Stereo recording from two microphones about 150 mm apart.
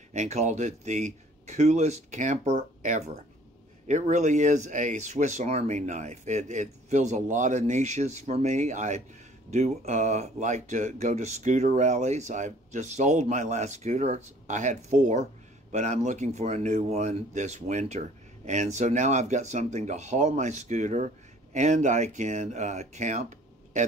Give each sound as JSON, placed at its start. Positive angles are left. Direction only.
{"t": 0.1, "sound": "speech", "side_deg": -50}
{"t": 3.8, "sound": "speech", "side_deg": -55}